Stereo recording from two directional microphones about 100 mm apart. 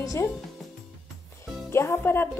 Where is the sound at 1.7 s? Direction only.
25° left (ahead or behind).